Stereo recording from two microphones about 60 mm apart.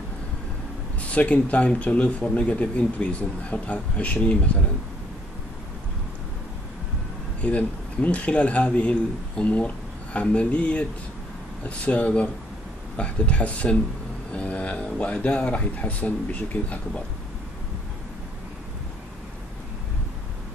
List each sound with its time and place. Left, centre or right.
1.1 s speech: left
7.4 s speech: left